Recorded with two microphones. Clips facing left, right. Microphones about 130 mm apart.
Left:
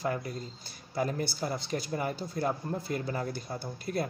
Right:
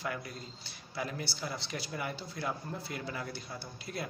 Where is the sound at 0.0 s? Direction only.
40° left (ahead or behind).